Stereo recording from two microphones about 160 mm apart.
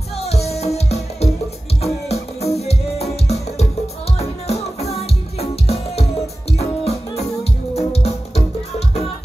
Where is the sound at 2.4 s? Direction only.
40° left (ahead or behind).